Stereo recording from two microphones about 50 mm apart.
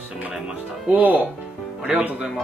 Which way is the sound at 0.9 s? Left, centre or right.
Right.